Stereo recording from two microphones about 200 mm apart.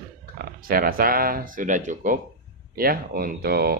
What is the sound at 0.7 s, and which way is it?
A man's voice, 45° right (ahead or behind).